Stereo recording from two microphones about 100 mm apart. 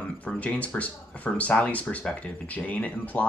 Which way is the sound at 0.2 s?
15° left (ahead or behind).